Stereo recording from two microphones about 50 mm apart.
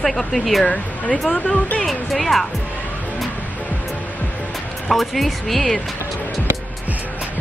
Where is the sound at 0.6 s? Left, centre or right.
Left.